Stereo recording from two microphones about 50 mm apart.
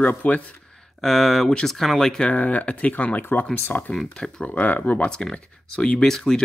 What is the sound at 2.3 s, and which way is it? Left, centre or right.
Speech, left.